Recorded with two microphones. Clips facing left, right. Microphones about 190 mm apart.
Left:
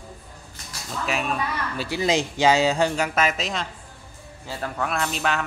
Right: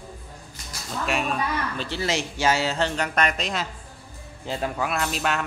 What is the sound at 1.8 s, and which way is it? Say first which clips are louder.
Speech: left 8 dB; 15° left (ahead or behind).